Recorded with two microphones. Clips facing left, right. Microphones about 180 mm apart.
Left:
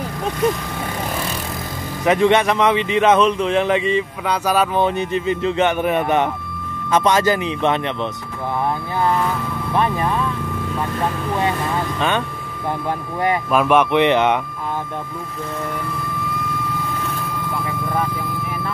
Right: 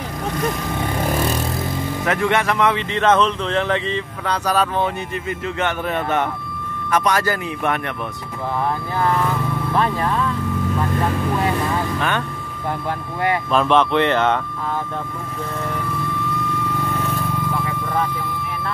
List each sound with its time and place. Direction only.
2.0 s speech: 20° left (ahead or behind)
4.8 s speech: 20° left (ahead or behind)
9.8 s speech: 15° left (ahead or behind)
13.3 s speech: 10° left (ahead or behind)